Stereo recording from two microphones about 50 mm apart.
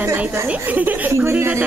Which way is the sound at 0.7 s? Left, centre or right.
Right.